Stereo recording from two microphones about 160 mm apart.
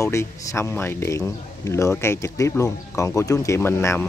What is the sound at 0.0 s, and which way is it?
Speech, 20° left (ahead or behind).